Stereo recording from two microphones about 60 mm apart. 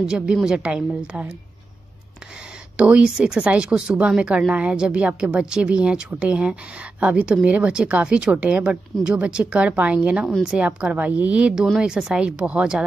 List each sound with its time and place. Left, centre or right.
0.0 s a woman's voice: centre
2.8 s a woman's voice: centre